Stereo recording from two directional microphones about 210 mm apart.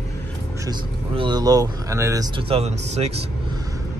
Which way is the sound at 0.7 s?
20° right (ahead or behind).